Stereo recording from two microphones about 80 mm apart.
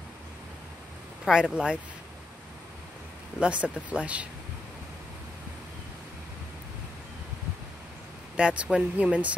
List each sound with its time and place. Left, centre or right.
1.2 s speech: centre
3.3 s speech: centre
8.4 s speech: centre